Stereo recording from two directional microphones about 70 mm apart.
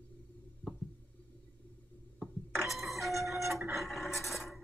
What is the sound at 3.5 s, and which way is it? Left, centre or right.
Printer, right.